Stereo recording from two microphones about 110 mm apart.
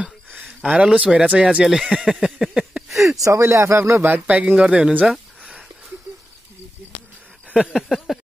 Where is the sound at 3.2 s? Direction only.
25° right (ahead or behind); by 5.6 s 10° right (ahead or behind).